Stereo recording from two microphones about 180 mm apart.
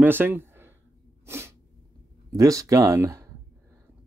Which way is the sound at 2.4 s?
20° right (ahead or behind).